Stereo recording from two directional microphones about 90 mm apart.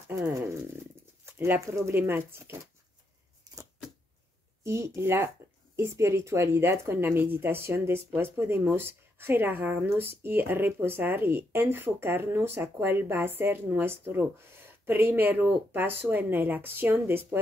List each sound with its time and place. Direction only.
1.2 s speech: 25° right (ahead or behind)
4.6 s speech: 35° right (ahead or behind)